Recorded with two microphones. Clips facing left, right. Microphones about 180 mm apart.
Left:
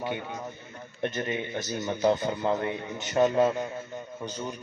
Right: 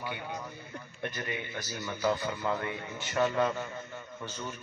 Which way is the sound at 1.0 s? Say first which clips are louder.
Left 7 dB; 25° left (ahead or behind).